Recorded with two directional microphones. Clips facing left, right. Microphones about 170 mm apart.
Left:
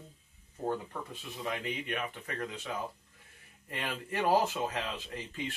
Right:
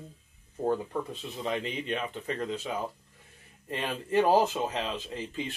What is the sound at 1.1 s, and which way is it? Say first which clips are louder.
Speech: right 5 dB; 25° right (ahead or behind).